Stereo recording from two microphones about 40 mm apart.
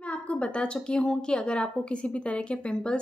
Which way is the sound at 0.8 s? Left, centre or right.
Left.